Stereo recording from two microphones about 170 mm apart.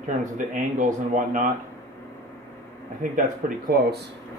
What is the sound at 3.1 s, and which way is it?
Speech, 50° right (ahead or behind).